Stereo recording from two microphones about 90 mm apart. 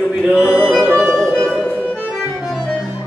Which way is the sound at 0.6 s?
5° left (ahead or behind).